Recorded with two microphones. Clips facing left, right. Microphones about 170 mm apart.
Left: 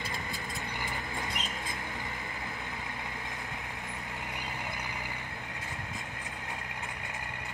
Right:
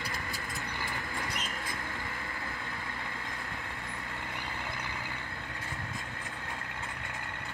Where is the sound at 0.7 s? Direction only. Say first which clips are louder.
Left 1 dB; 20° left (ahead or behind).